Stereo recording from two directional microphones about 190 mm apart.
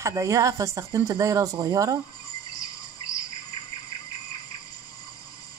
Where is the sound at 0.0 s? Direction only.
15° right (ahead or behind).